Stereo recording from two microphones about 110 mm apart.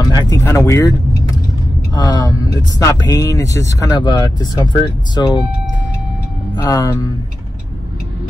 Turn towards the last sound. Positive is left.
turn(degrees=30)  # may be behind; listen again after turning